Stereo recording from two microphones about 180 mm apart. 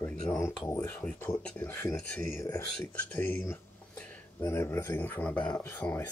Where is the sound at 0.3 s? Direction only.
15° left (ahead or behind).